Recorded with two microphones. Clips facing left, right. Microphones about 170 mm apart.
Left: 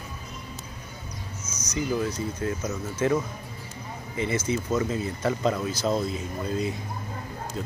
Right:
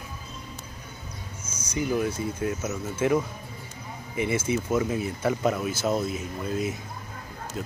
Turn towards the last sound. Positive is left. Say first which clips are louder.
# even
turn(degrees=-5)  # may be behind; listen again after turning